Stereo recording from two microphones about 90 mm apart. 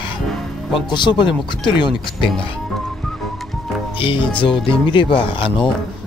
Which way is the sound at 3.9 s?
80° left.